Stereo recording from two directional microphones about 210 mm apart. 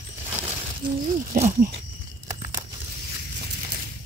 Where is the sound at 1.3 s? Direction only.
40° right (ahead or behind).